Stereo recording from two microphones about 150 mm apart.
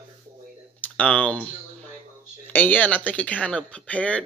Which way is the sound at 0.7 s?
10° left (ahead or behind).